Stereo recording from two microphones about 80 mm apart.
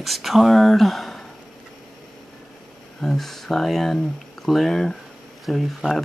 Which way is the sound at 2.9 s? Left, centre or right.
Centre.